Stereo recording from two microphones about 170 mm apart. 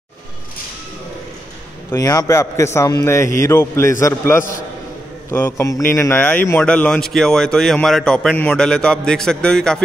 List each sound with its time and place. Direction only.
1.9 s a man's voice: 20° left (ahead or behind); by 9.8 s 5° left (ahead or behind)